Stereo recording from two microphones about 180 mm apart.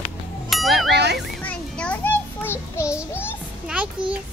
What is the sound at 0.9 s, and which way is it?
Children playing, 65° right (ahead or behind).